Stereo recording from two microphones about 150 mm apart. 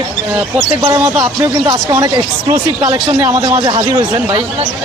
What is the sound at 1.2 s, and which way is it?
Speech, 25° right (ahead or behind).